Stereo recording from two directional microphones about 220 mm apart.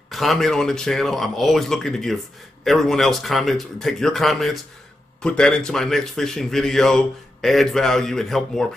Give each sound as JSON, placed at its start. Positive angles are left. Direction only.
{"t": 0.1, "sound": "speech", "side_deg": 0}